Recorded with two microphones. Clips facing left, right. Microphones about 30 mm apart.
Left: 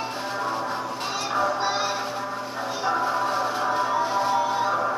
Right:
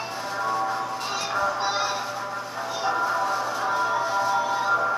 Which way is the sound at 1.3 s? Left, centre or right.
Centre.